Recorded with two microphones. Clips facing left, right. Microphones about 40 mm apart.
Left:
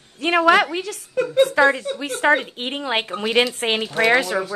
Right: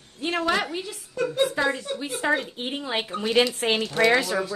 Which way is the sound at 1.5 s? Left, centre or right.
Left.